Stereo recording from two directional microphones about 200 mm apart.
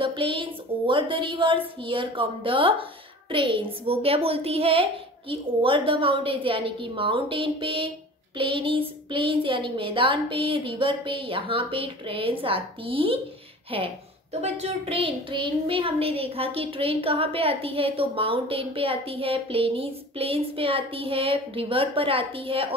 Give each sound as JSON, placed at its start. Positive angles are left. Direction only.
{"t": 0.0, "sound": "a woman's voice", "side_deg": -25}